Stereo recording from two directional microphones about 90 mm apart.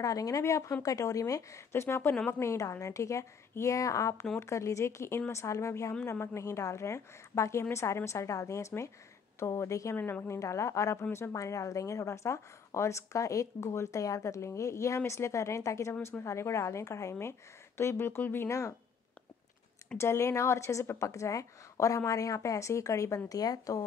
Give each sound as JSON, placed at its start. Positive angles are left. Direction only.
{"t": 0.0, "sound": "a woman's voice", "side_deg": 40}
{"t": 9.9, "sound": "a woman's voice", "side_deg": 20}
{"t": 20.0, "sound": "a woman's voice", "side_deg": 30}